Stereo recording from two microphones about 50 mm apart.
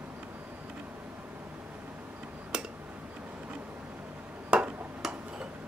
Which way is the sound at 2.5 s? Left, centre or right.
Centre.